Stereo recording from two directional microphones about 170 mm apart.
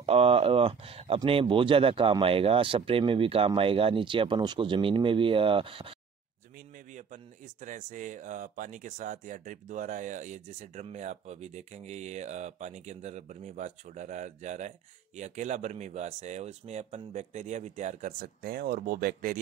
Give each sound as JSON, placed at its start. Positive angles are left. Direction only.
{"t": 0.0, "sound": "speech", "side_deg": -35}
{"t": 6.9, "sound": "a sound", "side_deg": -45}
{"t": 7.6, "sound": "speech", "side_deg": -50}